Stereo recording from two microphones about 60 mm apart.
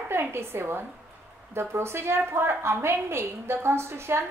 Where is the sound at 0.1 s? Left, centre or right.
Right.